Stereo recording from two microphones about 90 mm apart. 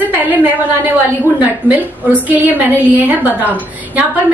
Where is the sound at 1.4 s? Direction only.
20° right (ahead or behind).